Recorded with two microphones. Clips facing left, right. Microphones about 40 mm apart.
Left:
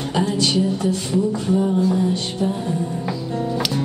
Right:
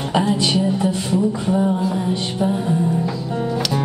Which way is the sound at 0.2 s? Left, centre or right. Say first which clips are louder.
Left 1 dB; right.